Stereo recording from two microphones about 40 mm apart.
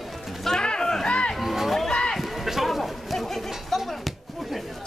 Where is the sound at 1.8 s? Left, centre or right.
Centre.